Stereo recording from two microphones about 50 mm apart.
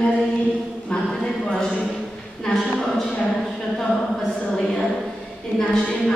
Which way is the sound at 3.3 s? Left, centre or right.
Centre.